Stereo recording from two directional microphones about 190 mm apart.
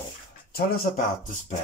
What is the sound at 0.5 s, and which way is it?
Speech, 50° left (ahead or behind).